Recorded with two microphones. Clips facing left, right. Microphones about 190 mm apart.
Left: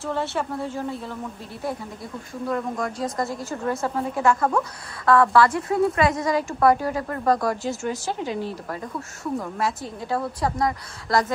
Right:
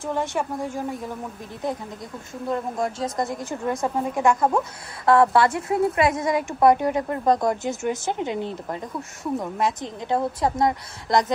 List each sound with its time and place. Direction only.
0.0 s a woman's voice: 15° right (ahead or behind)
2.4 s a woman's voice: 25° right (ahead or behind)
3.6 s a woman's voice: 15° right (ahead or behind)